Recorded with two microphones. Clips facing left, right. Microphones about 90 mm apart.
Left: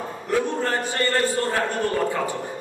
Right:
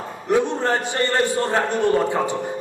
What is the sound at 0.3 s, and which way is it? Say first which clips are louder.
A man's voice: right 4 dB; 20° right (ahead or behind).